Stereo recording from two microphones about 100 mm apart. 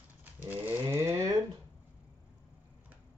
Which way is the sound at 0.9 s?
30° right (ahead or behind).